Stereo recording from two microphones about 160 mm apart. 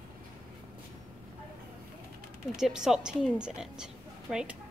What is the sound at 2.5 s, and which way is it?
A woman's voice, 5° right (ahead or behind).